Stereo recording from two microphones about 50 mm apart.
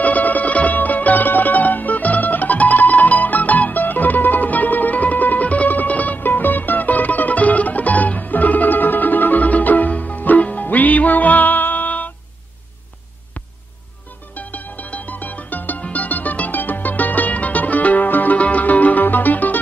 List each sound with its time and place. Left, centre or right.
0.0 s music: left
14.3 s music: left